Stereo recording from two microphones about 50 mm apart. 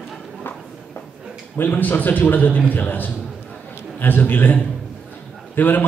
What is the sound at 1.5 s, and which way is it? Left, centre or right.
A man's voice, left.